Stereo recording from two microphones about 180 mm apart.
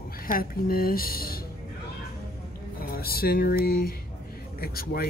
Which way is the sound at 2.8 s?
55° left (ahead or behind).